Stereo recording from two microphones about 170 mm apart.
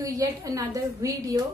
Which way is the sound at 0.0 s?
20° right (ahead or behind).